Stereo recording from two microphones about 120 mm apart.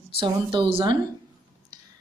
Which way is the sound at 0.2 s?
45° right (ahead or behind).